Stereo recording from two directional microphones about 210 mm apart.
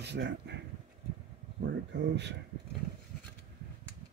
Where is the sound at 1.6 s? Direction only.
55° right (ahead or behind).